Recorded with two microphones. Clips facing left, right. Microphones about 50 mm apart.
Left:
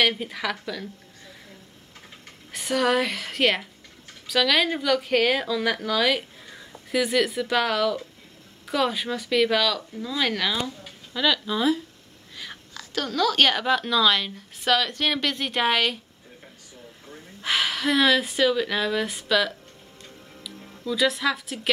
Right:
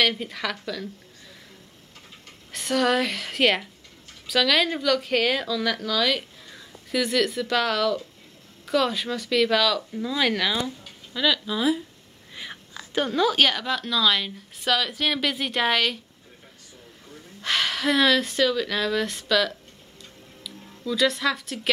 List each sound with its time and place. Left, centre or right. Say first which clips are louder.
0.0 s speech: left 1 dB; centre
2.5 s a woman's voice: even; centre
5.5 s a woman's voice: left 1 dB; centre
12.4 s whispering: right 1 dB; centre
13.4 s a woman's voice: left 2 dB; centre
17.4 s speech: even; centre